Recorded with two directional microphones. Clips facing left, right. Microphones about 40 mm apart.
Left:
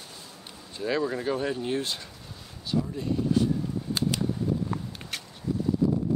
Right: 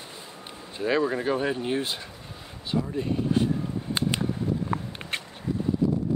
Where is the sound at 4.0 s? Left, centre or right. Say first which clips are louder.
Right 1 dB; right.